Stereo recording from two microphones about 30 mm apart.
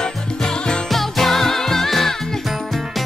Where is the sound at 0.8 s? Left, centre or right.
Centre.